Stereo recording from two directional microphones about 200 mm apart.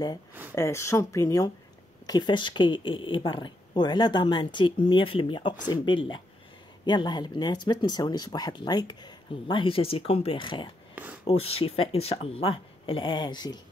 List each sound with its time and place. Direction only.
0.3 s speech: 10° right (ahead or behind)
0.6 s speech: 15° left (ahead or behind)